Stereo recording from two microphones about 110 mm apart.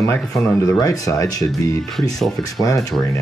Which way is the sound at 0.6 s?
30° left (ahead or behind).